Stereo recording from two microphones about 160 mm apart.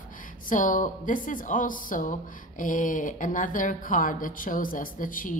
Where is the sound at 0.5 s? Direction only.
55° left (ahead or behind).